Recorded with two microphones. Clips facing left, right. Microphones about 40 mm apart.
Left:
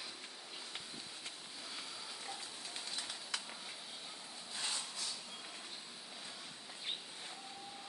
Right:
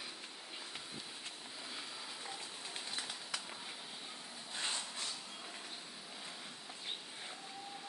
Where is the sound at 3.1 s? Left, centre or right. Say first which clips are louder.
Even; centre.